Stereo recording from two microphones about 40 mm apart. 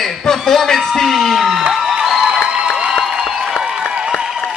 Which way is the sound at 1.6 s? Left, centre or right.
Centre.